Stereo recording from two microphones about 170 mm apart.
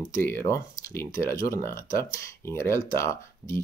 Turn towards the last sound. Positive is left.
turn(degrees=15)  # may be behind; listen again after turning